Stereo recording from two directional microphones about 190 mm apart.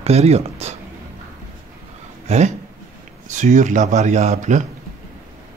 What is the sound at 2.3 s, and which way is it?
Speech, 35° right (ahead or behind).